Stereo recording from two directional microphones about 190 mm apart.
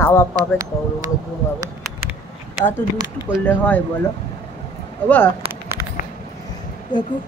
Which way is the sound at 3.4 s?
10° left (ahead or behind).